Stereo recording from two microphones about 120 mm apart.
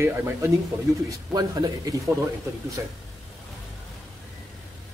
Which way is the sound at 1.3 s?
30° right (ahead or behind).